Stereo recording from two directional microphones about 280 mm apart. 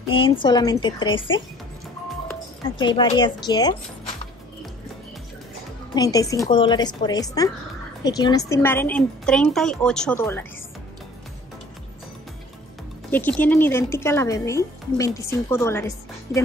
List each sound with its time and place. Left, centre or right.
0.1 s speech: centre
5.9 s speech: centre
13.1 s speech: centre